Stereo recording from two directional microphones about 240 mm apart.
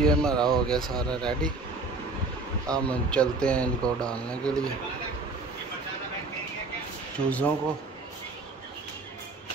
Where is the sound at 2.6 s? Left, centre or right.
Centre.